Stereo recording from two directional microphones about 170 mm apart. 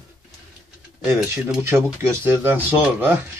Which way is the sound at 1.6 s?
15° right (ahead or behind).